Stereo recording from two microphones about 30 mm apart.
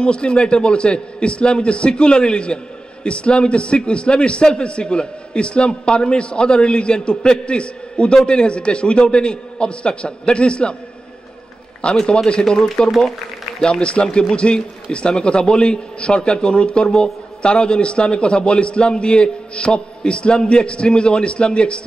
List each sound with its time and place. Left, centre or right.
0.0 s a man's voice: left
11.8 s a man's voice: left